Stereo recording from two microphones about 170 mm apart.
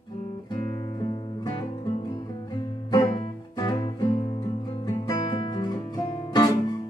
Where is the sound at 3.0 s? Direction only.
30° left (ahead or behind).